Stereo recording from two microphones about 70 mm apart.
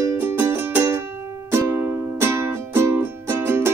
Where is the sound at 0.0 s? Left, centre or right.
Right.